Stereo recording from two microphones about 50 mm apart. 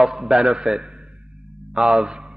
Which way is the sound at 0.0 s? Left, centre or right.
Centre.